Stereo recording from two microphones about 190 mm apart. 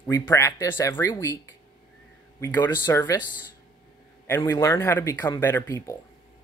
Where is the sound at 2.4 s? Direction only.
15° left (ahead or behind).